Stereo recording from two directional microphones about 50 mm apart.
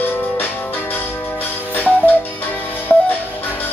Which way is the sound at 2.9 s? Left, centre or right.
Centre.